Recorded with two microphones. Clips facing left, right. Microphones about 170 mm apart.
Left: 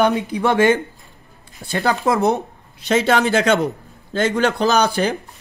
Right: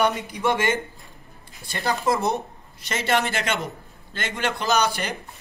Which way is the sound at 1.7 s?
60° left (ahead or behind).